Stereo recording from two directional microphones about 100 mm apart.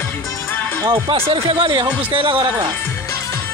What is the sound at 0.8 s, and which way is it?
Speech, 45° right (ahead or behind).